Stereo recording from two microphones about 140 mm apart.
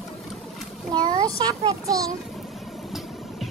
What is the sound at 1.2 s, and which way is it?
Speech, 30° right (ahead or behind).